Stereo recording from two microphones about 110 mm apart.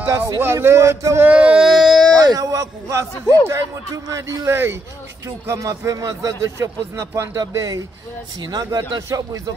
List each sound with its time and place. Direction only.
0.4 s a man's voice: 20° right (ahead or behind)
1.3 s speech: 10° right (ahead or behind)
2.2 s a man's voice: 35° right (ahead or behind)